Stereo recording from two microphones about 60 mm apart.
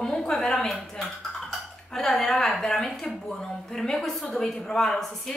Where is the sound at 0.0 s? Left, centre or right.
Centre.